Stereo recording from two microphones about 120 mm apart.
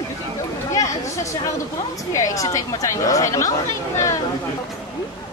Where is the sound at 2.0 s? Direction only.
30° left (ahead or behind).